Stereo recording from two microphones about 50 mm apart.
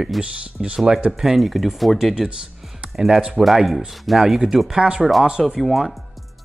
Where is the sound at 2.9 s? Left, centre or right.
Centre.